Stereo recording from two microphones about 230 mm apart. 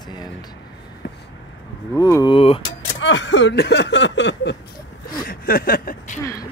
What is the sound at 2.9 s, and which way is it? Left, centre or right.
Speech, left.